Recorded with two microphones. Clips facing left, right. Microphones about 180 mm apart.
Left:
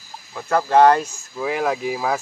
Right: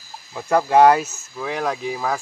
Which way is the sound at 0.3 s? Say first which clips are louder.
Right 1 dB; 15° right (ahead or behind).